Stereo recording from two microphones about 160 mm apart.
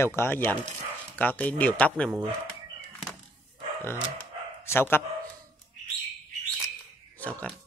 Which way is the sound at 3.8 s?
15° left (ahead or behind).